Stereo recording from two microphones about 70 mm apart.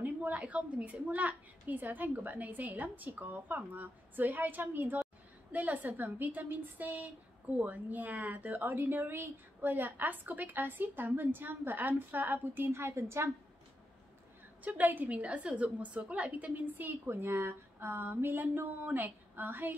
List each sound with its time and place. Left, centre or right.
0.0 s speech: right
14.6 s speech: right